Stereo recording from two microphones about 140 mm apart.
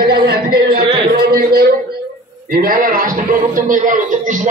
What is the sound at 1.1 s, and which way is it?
A man's voice, 90° right.